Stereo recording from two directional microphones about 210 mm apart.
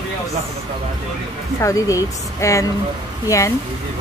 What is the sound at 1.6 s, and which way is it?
Speech, 15° left (ahead or behind).